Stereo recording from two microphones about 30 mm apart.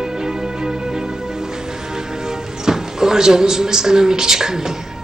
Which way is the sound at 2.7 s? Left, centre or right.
Centre.